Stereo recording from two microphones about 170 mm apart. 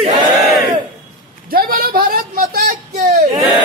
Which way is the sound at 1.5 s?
60° right (ahead or behind).